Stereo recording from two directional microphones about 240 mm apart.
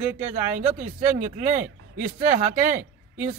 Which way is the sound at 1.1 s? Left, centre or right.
Right.